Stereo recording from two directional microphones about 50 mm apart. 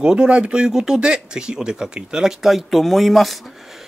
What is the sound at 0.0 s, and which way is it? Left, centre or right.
Speech, centre.